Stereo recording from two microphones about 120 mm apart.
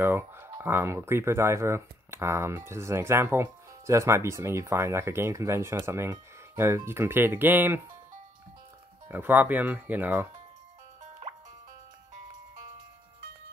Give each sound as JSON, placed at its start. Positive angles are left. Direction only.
{"t": 0.0, "sound": "speech", "side_deg": -20}
{"t": 9.1, "sound": "speech", "side_deg": -15}